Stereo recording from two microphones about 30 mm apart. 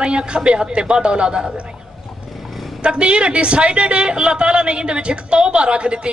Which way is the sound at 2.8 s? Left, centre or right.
Right.